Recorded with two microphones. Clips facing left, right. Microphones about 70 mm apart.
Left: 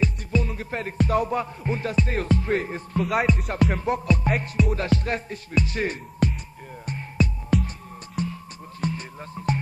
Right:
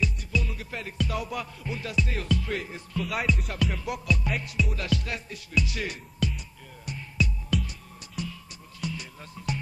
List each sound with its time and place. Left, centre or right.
0.0 s music: left